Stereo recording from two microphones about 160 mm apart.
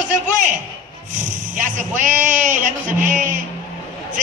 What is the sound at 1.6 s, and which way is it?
A man's voice, 50° right (ahead or behind).